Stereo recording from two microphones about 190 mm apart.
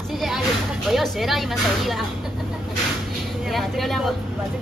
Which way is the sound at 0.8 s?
Centre (ahead or behind).